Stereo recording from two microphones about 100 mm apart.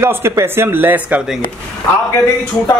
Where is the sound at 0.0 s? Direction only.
25° right (ahead or behind).